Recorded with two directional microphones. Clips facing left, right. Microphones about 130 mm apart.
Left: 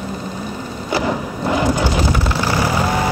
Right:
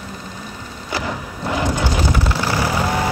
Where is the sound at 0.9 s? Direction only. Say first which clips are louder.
Left 6 dB; 25° left (ahead or behind).